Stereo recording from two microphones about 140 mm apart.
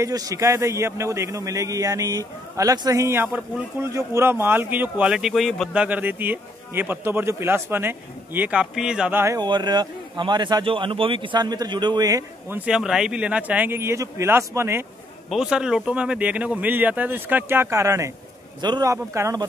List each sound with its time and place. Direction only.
0.0 s a man's voice: 25° right (ahead or behind); by 9.1 s 5° right (ahead or behind)
9.1 s a man's voice: 20° right (ahead or behind)
9.4 s a man's voice: 30° right (ahead or behind)
12.5 s speech: 5° right (ahead or behind)
15.2 s a man's voice: 5° right (ahead or behind); by 19.4 s 20° right (ahead or behind)